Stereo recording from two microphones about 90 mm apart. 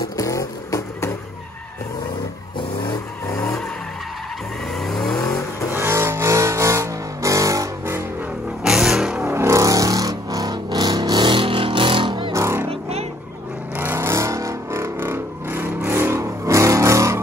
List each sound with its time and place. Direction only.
0.2 s vehicle: 35° left (ahead or behind)
3.3 s vehicle: 5° left (ahead or behind)
4.7 s vehicle: 5° left (ahead or behind)
5.7 s vehicle: 25° right (ahead or behind)
8.6 s vehicle: 5° right (ahead or behind)
9.2 s a sound: 25° right (ahead or behind); by 12.3 s 70° right (ahead or behind)
12.3 s a sound: 30° right (ahead or behind)
13.7 s vehicle: 25° right (ahead or behind)